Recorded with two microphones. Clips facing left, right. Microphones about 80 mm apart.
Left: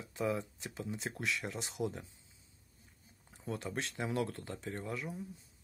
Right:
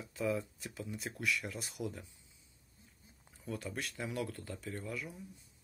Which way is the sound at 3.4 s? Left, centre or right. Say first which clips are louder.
Left 2 dB; left.